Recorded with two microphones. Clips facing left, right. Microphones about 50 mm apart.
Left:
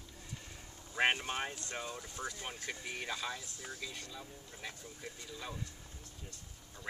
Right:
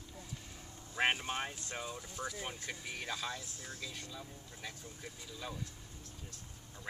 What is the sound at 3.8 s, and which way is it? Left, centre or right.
Speech, centre.